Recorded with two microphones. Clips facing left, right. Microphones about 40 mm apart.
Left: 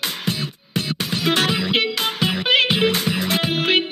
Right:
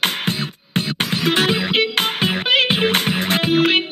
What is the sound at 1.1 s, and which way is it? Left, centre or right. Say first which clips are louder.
Music: right 1 dB; centre.